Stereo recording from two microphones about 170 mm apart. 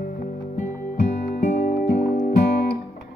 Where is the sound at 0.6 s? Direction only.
45° left (ahead or behind).